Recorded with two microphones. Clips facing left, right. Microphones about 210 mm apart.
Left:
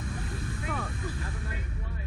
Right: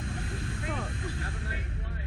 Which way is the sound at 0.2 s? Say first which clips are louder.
Even; 25° right (ahead or behind).